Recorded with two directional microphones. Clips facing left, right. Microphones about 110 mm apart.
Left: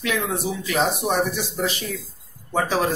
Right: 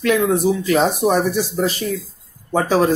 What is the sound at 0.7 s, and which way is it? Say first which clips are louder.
Speech: right 4 dB; 40° right (ahead or behind).